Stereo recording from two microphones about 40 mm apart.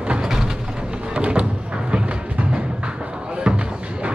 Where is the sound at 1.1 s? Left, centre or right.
Right.